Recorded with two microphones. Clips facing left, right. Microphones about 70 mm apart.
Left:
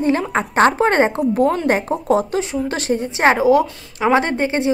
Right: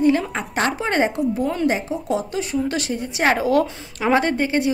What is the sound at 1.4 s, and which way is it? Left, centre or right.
Speech, left.